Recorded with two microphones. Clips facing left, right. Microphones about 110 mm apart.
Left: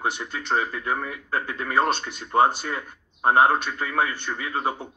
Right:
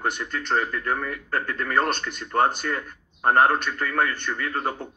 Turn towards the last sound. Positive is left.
turn(degrees=10)  # may be behind; listen again after turning